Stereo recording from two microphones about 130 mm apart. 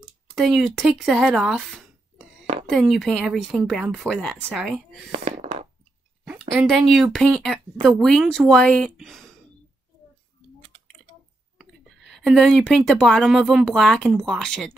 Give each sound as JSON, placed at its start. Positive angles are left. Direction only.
{"t": 0.4, "sound": "speech", "side_deg": 0}
{"t": 5.1, "sound": "stomach rumble", "side_deg": -65}
{"t": 6.7, "sound": "speech", "side_deg": 0}
{"t": 11.5, "sound": "a woman's voice", "side_deg": 0}